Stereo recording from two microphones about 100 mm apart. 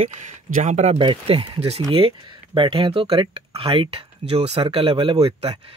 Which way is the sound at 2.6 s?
60° right (ahead or behind).